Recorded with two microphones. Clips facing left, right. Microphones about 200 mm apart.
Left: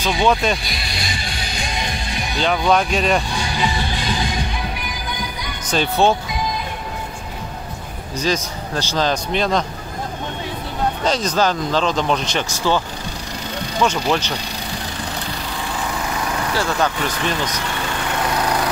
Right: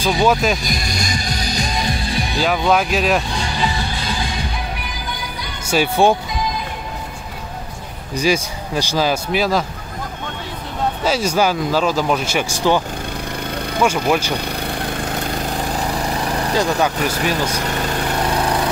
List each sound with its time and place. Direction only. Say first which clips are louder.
0.0 s speech: right 2 dB; 5° right (ahead or behind)
0.7 s music: right 5 dB; 45° right (ahead or behind)
2.4 s speech: even; 5° right (ahead or behind)
5.7 s speech: right 2 dB; 10° right (ahead or behind)
8.2 s speech: right 3 dB; 10° right (ahead or behind)
11.1 s speech: right 2 dB; 10° right (ahead or behind)
14.3 s lawn mower: right 4 dB; 55° right (ahead or behind); by 16.5 s 35° right (ahead or behind)
16.5 s speech: right 3 dB; 15° right (ahead or behind)
17.5 s lawn mower: right 3 dB; 40° right (ahead or behind)